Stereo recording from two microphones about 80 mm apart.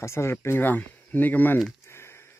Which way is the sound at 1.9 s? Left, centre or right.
Left.